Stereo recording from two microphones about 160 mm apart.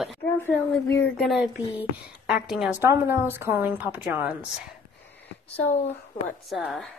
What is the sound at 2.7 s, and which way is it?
A woman's voice, 15° right (ahead or behind).